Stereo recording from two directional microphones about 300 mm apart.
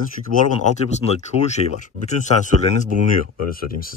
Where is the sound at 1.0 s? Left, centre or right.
Centre.